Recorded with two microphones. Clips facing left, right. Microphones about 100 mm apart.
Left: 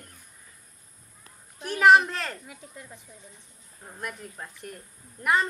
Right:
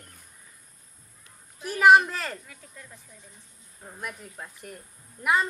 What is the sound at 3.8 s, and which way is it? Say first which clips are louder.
Speech: left 1 dB; centre (ahead or behind).